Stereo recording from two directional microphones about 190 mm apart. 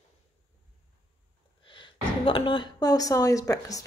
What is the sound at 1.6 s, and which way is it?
Speech, 25° left (ahead or behind).